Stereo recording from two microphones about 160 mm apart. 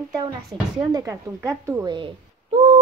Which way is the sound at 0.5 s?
30° right (ahead or behind).